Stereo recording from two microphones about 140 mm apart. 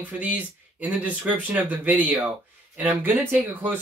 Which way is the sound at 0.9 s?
10° right (ahead or behind).